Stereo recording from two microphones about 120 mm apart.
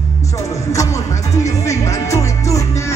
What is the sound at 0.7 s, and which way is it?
Music, 25° left (ahead or behind).